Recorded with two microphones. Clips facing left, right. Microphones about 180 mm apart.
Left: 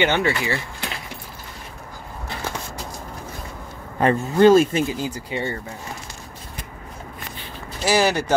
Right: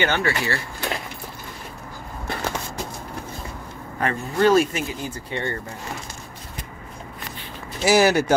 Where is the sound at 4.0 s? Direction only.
25° left (ahead or behind).